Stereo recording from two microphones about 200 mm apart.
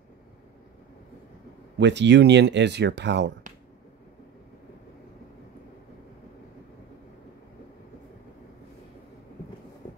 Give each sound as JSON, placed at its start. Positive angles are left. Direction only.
{"t": 1.8, "sound": "speech", "side_deg": -60}